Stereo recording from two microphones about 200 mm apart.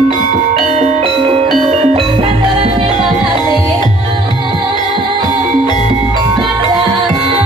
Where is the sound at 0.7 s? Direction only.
30° right (ahead or behind).